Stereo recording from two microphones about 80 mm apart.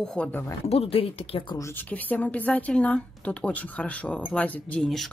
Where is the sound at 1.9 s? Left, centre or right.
Centre.